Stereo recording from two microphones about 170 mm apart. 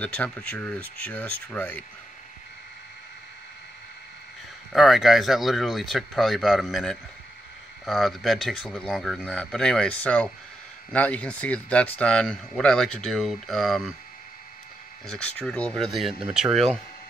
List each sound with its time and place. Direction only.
0.0 s speech: 5° left (ahead or behind)
4.7 s speech: centre (ahead or behind)
15.0 s speech: 5° left (ahead or behind)